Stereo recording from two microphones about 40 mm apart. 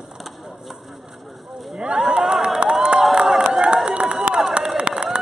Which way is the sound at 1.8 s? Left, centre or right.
Right.